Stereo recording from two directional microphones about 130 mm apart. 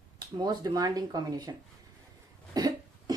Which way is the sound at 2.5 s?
30° right (ahead or behind).